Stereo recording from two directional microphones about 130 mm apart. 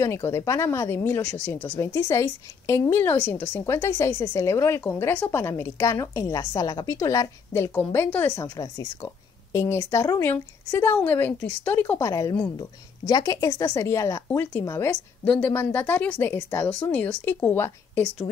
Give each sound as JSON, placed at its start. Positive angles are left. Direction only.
{"t": 0.0, "sound": "a woman's voice", "side_deg": 20}
{"t": 12.1, "sound": "a woman's voice", "side_deg": 25}